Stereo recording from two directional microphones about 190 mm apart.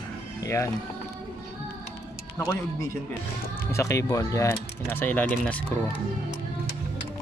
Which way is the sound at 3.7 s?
15° left (ahead or behind).